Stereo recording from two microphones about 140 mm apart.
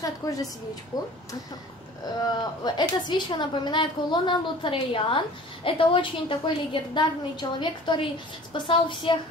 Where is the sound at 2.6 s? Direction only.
30° left (ahead or behind).